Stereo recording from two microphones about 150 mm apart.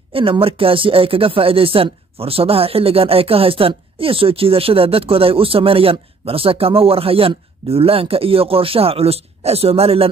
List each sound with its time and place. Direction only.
0.1 s speech: 35° right (ahead or behind)